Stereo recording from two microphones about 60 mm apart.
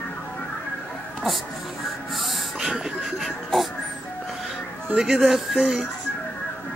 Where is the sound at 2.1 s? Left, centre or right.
Centre.